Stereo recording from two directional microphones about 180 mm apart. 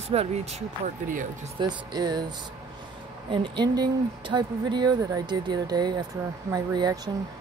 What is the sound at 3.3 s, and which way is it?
A woman's voice, 25° right (ahead or behind).